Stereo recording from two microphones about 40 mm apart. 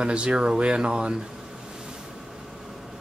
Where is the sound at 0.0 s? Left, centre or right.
Right.